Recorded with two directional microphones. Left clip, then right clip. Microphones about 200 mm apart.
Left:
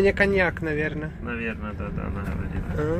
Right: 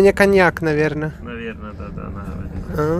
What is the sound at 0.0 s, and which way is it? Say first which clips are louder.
Speech: right 8 dB; 35° right (ahead or behind).